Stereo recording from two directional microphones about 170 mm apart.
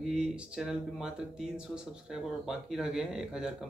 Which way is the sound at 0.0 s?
5° right (ahead or behind).